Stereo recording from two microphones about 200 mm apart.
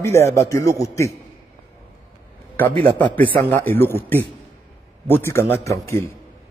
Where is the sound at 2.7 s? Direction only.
25° right (ahead or behind).